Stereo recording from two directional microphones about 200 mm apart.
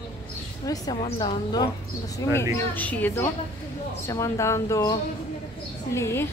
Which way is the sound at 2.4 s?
10° left (ahead or behind).